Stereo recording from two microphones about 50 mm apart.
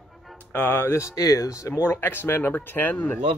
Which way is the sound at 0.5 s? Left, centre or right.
Left.